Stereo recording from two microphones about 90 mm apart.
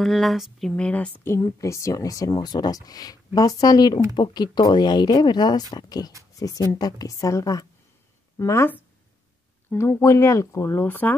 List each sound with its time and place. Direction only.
0.0 s speech: centre (ahead or behind)
1.4 s a woman's voice: 35° left (ahead or behind)
9.7 s speech: 25° left (ahead or behind)